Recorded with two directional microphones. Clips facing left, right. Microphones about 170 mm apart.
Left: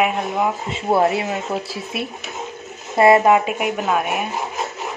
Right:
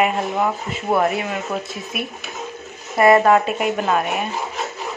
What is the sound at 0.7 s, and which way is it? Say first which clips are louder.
Speech: left 4 dB; 25° left (ahead or behind).